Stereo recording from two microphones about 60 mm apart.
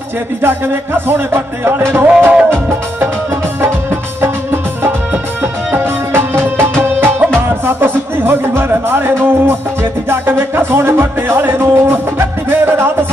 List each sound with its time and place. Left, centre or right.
0.9 s music: right
3.6 s music: right